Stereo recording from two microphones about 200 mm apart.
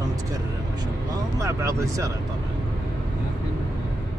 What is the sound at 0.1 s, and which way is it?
Vehicle, 15° right (ahead or behind).